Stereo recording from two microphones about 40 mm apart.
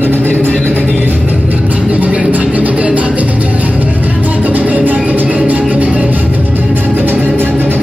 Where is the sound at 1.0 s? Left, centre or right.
Right.